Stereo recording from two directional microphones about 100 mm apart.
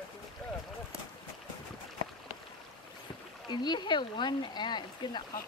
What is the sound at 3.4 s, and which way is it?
Speech, 45° left (ahead or behind).